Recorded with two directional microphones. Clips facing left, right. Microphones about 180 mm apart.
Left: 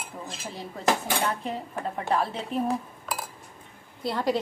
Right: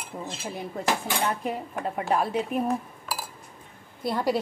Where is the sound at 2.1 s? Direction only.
15° right (ahead or behind).